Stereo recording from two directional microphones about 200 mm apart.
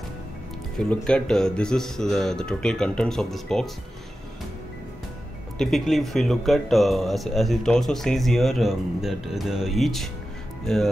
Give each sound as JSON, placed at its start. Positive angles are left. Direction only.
{"t": 0.7, "sound": "speech", "side_deg": 5}
{"t": 5.6, "sound": "speech", "side_deg": 0}